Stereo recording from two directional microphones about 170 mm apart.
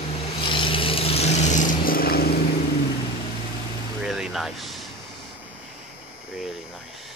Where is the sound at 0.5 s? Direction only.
30° left (ahead or behind); by 2.3 s 65° left (ahead or behind).